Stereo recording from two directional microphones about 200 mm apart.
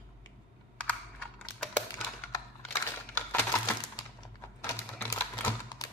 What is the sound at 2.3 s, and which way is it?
Typewriter, 10° left (ahead or behind).